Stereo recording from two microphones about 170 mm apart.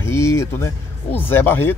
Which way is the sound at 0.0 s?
15° left (ahead or behind).